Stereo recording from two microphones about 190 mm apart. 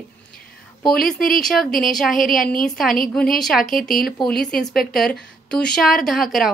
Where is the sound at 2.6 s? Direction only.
Centre (ahead or behind).